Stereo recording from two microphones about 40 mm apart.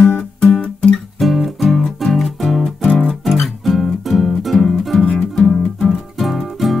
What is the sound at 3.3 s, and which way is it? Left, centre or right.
Music, centre.